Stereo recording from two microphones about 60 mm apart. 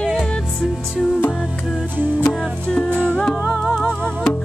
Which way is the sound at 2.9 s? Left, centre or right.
Right.